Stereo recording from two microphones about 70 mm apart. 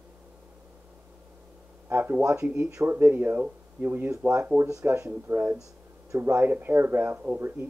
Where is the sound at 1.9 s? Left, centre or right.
Right.